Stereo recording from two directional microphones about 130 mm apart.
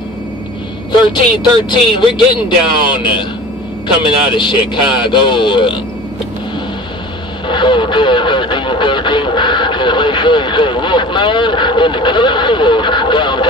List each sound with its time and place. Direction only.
1.7 s speech: 35° left (ahead or behind)
7.4 s speech: 40° left (ahead or behind)